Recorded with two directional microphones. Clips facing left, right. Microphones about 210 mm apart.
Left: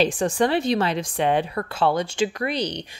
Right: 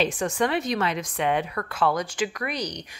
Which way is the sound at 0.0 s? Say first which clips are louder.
Left 4 dB; 30° left (ahead or behind).